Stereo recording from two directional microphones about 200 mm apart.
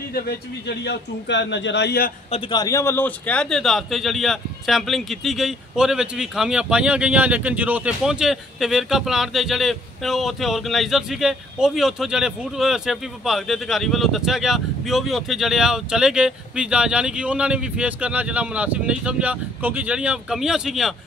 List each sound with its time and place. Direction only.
0.1 s a man's voice: 55° left (ahead or behind)
2.3 s a man's voice: 20° left (ahead or behind); by 20.9 s centre (ahead or behind)